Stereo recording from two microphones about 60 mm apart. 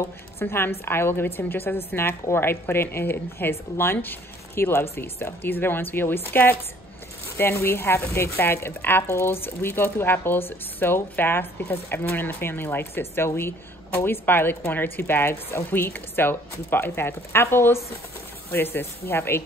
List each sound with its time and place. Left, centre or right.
0.4 s speech: left